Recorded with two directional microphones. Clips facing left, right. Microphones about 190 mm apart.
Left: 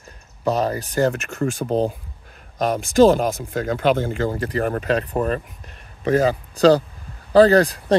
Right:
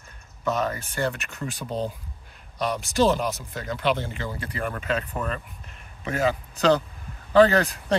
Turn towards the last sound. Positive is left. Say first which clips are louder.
# left 7 dB
turn(degrees=35)  # may be behind; listen again after turning